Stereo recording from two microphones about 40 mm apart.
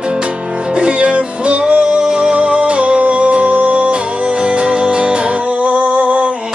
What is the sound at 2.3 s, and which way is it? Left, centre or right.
Music, right.